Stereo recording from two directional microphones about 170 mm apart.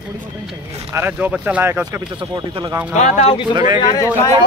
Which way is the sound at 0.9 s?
10° right (ahead or behind).